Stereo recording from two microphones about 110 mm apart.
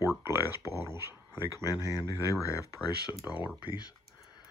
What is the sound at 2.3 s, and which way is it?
Speech, 30° left (ahead or behind).